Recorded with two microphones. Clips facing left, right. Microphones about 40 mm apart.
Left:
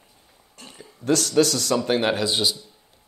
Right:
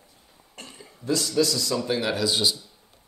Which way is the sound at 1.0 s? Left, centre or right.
Left.